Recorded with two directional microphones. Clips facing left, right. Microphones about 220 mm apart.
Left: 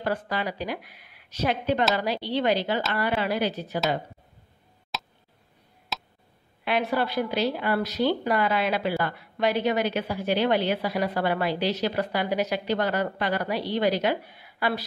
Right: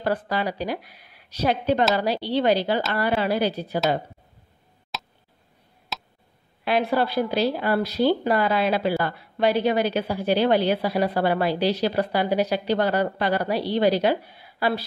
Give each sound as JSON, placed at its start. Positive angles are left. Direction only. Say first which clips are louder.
{"t": 0.0, "sound": "speech", "louder": "right 3 dB", "side_deg": -35}
{"t": 4.9, "sound": "a sound", "louder": "even", "side_deg": 0}
{"t": 5.9, "sound": "tick", "louder": "even", "side_deg": 0}
{"t": 6.6, "sound": "speech", "louder": "right 3 dB", "side_deg": -35}